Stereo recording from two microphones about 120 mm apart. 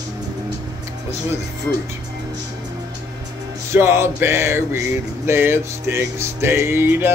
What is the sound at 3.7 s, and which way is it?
Music, 20° right (ahead or behind).